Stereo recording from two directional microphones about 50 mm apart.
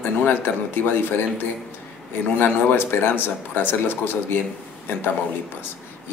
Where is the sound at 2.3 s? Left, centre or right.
Left.